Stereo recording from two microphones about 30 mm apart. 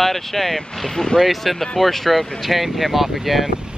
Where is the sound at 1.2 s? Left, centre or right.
Centre.